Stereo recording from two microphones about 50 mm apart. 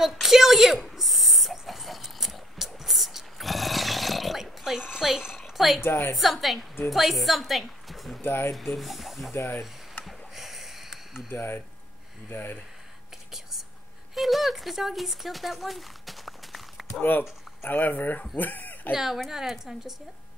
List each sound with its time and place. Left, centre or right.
0.0 s a sound: centre
5.8 s a woman's voice: left
6.1 s a woman's voice: centre
8.2 s speech: left
8.7 s a woman's voice: centre
10.0 s a sound: centre
11.3 s a woman's voice: left
14.1 s a sound: centre
17.6 s speech: left
18.9 s a woman's voice: centre